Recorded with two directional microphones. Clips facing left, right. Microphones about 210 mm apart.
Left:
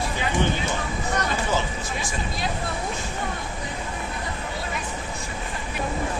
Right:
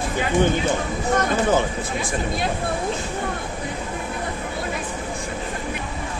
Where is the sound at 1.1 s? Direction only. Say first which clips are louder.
Right 7 dB; 50° right (ahead or behind).